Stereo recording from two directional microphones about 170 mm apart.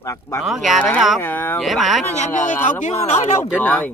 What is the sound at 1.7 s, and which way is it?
Speech, centre (ahead or behind).